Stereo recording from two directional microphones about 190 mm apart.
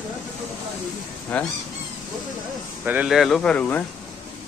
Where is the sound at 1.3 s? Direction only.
5° left (ahead or behind).